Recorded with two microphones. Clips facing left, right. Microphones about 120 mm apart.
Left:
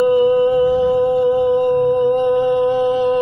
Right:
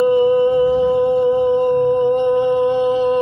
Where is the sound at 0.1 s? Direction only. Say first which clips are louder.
Even; 5° left (ahead or behind).